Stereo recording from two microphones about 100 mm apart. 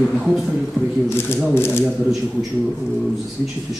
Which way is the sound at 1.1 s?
25° left (ahead or behind).